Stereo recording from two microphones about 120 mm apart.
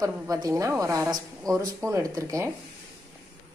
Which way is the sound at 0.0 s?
30° right (ahead or behind).